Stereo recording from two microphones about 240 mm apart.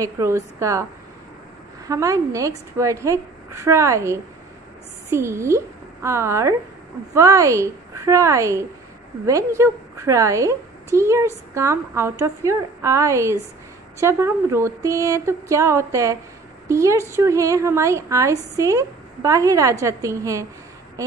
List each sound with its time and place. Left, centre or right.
0.0 s a woman's voice: centre
1.9 s a woman's voice: centre